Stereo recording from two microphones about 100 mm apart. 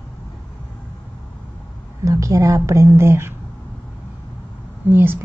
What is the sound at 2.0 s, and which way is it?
A woman's voice, 30° right (ahead or behind).